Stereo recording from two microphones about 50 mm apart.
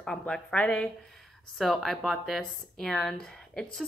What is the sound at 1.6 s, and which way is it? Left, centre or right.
A woman's voice, centre.